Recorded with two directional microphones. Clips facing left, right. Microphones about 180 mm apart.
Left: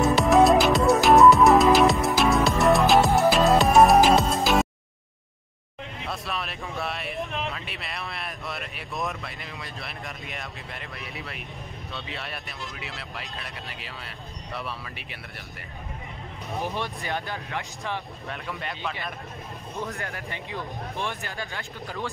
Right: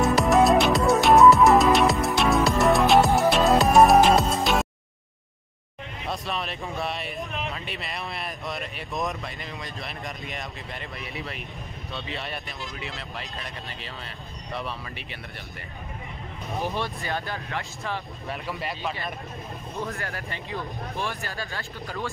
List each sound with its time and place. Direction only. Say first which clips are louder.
0.0 s music: left 1 dB; centre (ahead or behind)
6.0 s speech: right 3 dB; centre (ahead or behind)
16.6 s speech: right 2 dB; 15° left (ahead or behind)
18.3 s speech: right 3 dB; 5° right (ahead or behind)
19.9 s speech: right 1 dB; 15° left (ahead or behind)